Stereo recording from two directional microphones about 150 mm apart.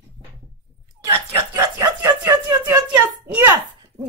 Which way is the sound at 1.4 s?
20° right (ahead or behind).